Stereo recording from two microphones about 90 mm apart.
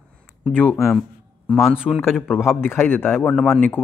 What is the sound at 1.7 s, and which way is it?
Speech, 10° right (ahead or behind).